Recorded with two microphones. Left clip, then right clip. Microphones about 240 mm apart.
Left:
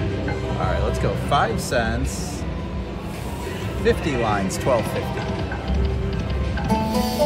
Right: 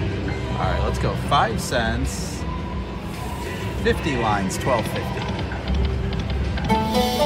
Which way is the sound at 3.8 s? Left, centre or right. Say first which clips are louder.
Left 1 dB; centre.